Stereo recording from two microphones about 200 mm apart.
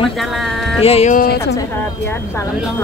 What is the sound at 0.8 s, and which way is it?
Speech, 30° left (ahead or behind).